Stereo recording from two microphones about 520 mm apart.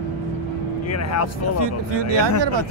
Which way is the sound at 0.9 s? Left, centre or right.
Left.